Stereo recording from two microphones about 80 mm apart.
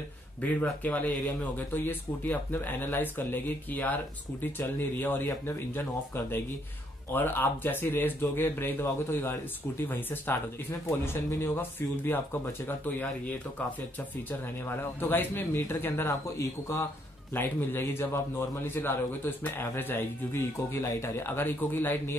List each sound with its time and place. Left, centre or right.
0.4 s speech: centre
13.9 s speech: left
16.1 s a man's voice: left
17.3 s speech: left